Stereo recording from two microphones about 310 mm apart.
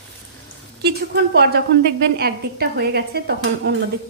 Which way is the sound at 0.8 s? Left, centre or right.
Right.